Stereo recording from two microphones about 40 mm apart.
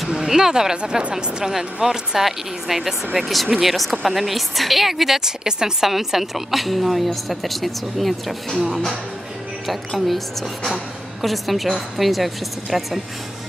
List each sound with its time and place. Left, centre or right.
0.1 s a woman's voice: centre
8.5 s speech: centre
9.7 s a woman's voice: centre